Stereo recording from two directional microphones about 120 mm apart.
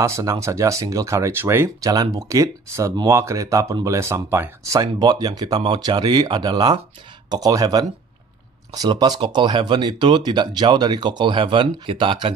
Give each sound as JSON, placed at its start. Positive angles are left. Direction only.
{"t": 0.0, "sound": "speech", "side_deg": -25}
{"t": 1.9, "sound": "speech", "side_deg": -30}